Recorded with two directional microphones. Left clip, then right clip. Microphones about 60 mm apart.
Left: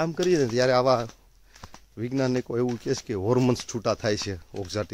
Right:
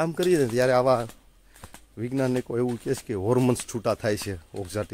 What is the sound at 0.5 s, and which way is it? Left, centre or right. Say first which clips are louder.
Speech: even; centre.